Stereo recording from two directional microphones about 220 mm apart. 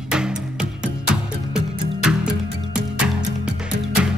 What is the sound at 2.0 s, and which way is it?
Music, 5° right (ahead or behind).